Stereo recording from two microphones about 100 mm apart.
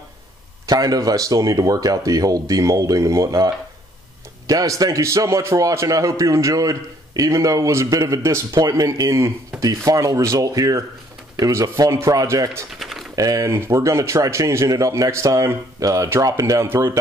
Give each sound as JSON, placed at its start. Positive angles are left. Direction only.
{"t": 0.7, "sound": "a man's voice", "side_deg": -40}
{"t": 8.5, "sound": "a man's voice", "side_deg": -35}
{"t": 12.7, "sound": "typing", "side_deg": 0}
{"t": 13.1, "sound": "a man's voice", "side_deg": -35}